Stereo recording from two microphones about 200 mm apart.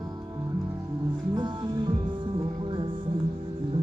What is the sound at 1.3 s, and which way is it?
Music, 20° right (ahead or behind).